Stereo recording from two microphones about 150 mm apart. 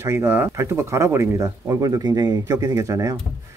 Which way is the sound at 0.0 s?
15° right (ahead or behind).